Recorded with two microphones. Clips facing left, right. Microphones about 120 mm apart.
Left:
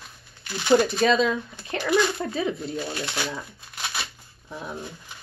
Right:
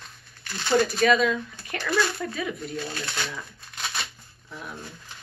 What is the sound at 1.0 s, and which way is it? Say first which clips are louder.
Speech: even; 25° left (ahead or behind).